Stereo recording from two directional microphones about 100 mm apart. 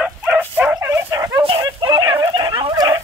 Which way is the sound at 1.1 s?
35° right (ahead or behind).